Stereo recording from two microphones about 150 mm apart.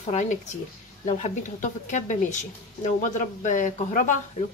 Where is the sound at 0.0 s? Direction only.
50° left (ahead or behind).